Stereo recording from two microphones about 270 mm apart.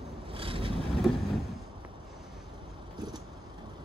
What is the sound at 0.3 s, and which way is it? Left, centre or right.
Vehicle, centre.